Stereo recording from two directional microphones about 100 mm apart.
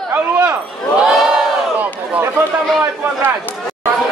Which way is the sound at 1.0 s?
5° right (ahead or behind).